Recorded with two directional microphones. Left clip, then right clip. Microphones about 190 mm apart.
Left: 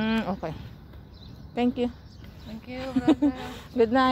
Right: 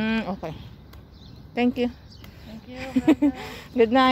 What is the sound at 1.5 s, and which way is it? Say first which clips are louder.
Speech: right 3 dB; 15° right (ahead or behind).